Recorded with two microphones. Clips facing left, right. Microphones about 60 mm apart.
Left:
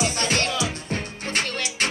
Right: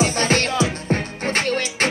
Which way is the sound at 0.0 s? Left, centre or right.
Right.